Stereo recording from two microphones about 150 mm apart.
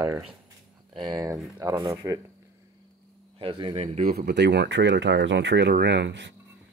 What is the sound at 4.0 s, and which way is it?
Speech, 75° right (ahead or behind).